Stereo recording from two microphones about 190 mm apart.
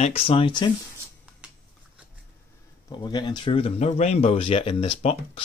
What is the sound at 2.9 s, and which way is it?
Speech, 20° left (ahead or behind).